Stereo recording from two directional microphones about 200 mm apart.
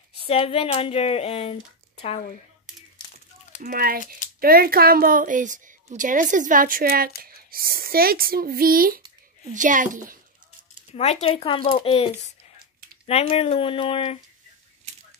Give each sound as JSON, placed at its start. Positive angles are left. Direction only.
{"t": 0.3, "sound": "speech", "side_deg": 30}
{"t": 3.6, "sound": "a child's voice", "side_deg": -45}
{"t": 10.9, "sound": "speech", "side_deg": 35}